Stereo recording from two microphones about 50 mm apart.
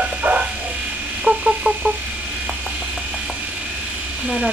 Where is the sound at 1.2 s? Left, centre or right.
Centre.